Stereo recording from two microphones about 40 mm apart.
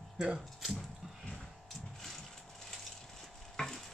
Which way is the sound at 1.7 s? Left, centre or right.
Centre.